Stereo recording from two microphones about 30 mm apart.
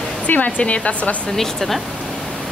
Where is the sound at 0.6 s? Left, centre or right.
Left.